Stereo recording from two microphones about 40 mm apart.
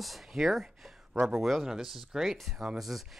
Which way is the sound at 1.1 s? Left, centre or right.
Right.